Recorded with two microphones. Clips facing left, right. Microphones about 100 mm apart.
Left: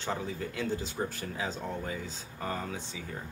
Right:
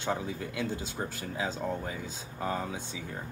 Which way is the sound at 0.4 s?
10° right (ahead or behind).